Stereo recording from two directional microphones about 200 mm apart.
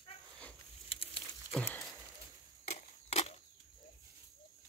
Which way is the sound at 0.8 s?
25° left (ahead or behind).